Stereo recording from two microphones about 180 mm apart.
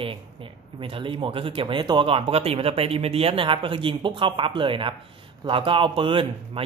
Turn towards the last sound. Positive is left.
turn(degrees=-30)  # may be behind; listen again after turning